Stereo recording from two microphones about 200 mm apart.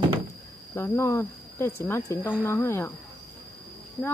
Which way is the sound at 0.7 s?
15° left (ahead or behind).